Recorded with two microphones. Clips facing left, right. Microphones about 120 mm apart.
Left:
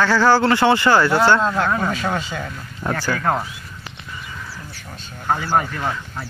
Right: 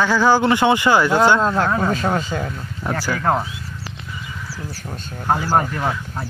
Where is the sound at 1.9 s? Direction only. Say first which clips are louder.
Right 3 dB; 30° right (ahead or behind).